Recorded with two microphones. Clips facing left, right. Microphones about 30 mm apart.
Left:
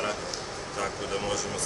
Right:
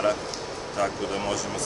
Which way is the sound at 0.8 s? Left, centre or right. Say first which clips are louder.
Right 4 dB; centre.